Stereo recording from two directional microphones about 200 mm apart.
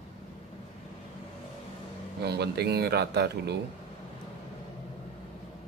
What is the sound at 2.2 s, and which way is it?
A man's voice, 55° right (ahead or behind).